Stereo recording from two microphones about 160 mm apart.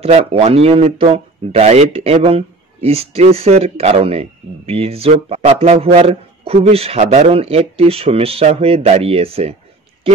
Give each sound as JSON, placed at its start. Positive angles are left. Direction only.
{"t": 0.0, "sound": "speech", "side_deg": -35}